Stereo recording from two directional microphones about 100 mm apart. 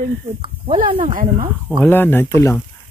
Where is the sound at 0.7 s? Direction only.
60° right (ahead or behind).